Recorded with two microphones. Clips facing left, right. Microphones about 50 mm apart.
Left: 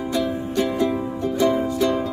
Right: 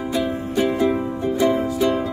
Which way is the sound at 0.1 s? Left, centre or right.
Centre.